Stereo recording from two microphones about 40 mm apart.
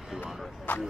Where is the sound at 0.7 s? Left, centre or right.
Left.